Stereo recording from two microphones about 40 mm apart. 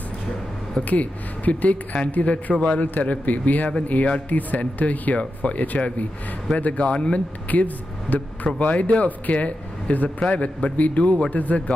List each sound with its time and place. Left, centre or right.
0.8 s speech: left
7.5 s speech: left